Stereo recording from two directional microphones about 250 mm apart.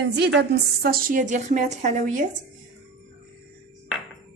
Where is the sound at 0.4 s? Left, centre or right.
Right.